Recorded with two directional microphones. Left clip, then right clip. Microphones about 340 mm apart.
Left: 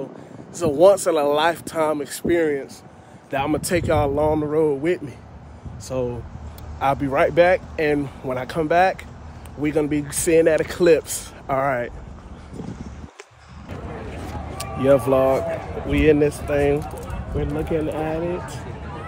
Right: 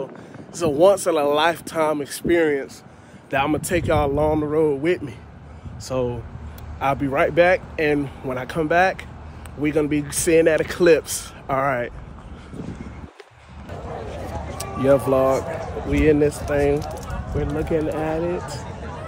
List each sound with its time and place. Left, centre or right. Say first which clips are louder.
0.6 s speech: left 1 dB; centre
14.6 s speech: left 1 dB; centre